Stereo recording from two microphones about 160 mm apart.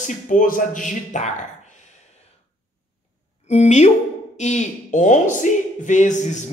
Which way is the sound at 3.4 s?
45° left (ahead or behind).